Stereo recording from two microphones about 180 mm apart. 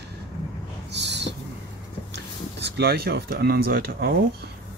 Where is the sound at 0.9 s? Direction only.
75° right (ahead or behind).